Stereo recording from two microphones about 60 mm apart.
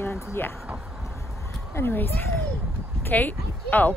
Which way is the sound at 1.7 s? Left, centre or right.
Left.